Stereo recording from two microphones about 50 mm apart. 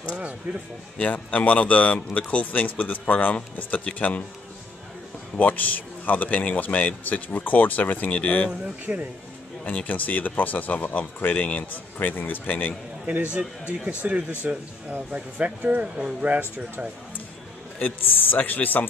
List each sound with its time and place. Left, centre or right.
0.5 s speech: right
0.9 s a man's voice: left
5.4 s a man's voice: left
8.9 s speech: right
9.7 s a man's voice: left
13.0 s speech: right
16.0 s speech: centre
16.3 s speech: right
17.8 s a man's voice: left